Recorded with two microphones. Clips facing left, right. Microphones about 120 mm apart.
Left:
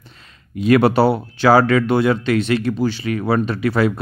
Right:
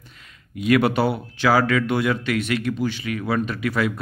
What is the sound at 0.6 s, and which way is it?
Speech, 35° left (ahead or behind).